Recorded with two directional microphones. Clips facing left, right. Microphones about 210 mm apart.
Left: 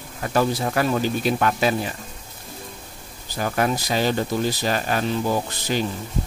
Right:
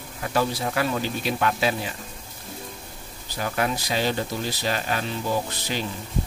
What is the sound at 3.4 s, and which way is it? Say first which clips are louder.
Speech: left 3 dB; 45° left (ahead or behind).